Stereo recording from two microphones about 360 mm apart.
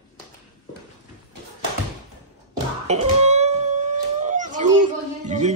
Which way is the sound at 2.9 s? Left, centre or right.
Centre.